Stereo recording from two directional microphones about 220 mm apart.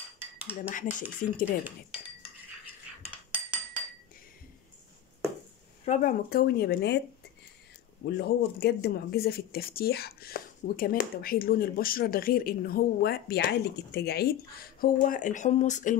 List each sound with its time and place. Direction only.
0.7 s speech: 35° left (ahead or behind)
1.4 s cutlery: 5° right (ahead or behind)
3.0 s cutlery: 5° right (ahead or behind)
5.9 s speech: 40° left (ahead or behind)
8.0 s speech: 45° left (ahead or behind)